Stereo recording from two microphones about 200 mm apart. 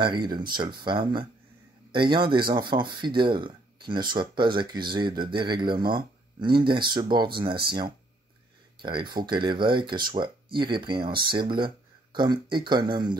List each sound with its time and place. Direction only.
0.0 s speech: 20° right (ahead or behind)
8.8 s speech: 25° right (ahead or behind)